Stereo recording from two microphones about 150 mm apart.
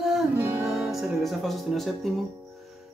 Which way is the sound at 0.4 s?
15° right (ahead or behind).